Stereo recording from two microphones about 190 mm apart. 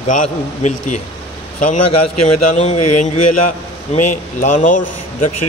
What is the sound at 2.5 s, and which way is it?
Speech, 40° left (ahead or behind).